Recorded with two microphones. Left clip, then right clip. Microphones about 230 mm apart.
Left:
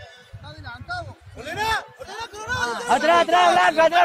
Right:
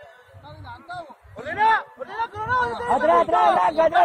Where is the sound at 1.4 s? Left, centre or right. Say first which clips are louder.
Right 5 dB; left.